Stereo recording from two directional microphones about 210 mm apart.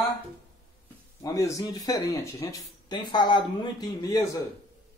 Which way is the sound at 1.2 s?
15° left (ahead or behind).